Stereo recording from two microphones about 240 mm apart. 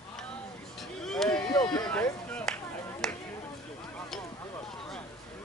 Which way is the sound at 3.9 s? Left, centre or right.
Centre.